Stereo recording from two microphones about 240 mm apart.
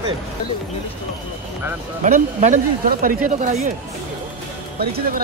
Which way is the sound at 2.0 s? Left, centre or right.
Right.